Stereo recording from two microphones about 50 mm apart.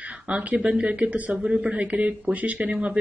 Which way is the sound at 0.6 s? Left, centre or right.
Centre.